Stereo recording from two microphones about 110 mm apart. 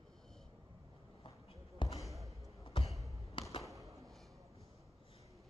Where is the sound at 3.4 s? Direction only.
50° left (ahead or behind).